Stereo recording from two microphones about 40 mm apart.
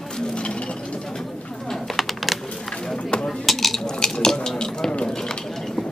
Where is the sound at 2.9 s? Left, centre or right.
Centre.